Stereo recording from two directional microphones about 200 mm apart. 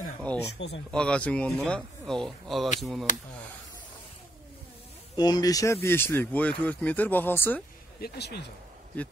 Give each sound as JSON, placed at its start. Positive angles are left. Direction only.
{"t": 0.6, "sound": "speech", "side_deg": 60}
{"t": 0.9, "sound": "speech", "side_deg": 5}
{"t": 5.1, "sound": "speech", "side_deg": 20}
{"t": 8.0, "sound": "speech", "side_deg": 55}